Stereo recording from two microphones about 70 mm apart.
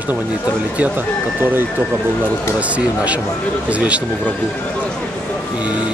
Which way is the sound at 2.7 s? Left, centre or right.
Centre.